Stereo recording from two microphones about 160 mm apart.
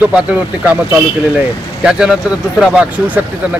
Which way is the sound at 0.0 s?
10° right (ahead or behind).